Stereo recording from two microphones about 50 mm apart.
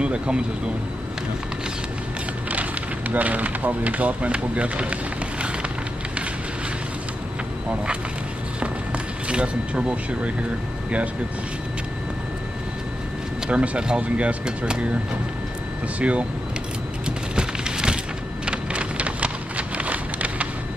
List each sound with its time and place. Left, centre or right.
0.0 s speech: right
2.5 s speech: right
9.3 s speech: right
13.5 s speech: right
16.0 s speech: right
17.0 s a sound: centre
18.4 s rain: right